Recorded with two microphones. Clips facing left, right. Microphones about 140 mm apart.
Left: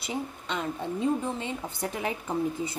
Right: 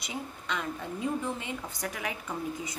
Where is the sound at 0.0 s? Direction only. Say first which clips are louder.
Left 5 dB; 30° left (ahead or behind).